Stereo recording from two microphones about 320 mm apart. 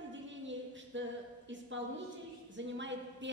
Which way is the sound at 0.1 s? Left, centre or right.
Right.